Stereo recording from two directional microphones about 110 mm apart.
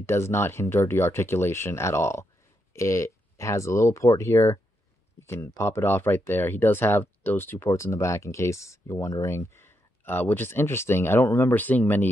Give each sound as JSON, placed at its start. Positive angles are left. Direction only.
{"t": 0.0, "sound": "speech", "side_deg": 25}